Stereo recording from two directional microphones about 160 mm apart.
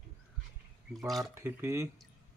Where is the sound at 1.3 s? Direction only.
15° right (ahead or behind).